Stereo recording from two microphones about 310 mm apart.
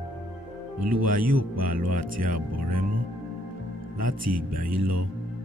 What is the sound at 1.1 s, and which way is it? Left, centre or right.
Speech, right.